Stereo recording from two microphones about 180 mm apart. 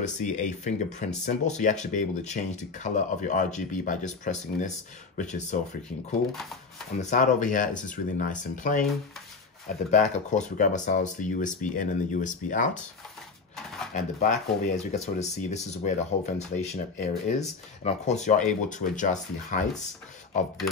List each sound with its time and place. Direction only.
0.0 s speech: 40° left (ahead or behind)
7.0 s speech: 45° left (ahead or behind)
14.2 s speech: 45° left (ahead or behind)